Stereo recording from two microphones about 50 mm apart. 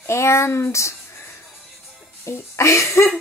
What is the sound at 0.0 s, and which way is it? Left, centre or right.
Speech, left.